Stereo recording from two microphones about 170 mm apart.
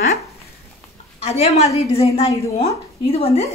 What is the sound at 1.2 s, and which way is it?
A woman's voice, 40° left (ahead or behind).